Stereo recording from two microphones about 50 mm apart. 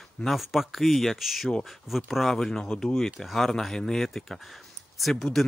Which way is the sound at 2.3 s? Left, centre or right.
Centre.